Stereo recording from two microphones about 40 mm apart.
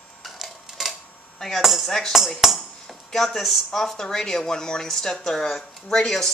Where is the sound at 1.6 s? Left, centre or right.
Centre.